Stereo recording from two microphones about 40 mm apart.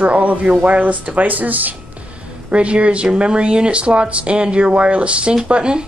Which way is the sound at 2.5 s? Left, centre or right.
Right.